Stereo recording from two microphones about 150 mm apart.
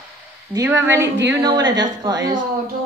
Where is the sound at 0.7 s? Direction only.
15° right (ahead or behind).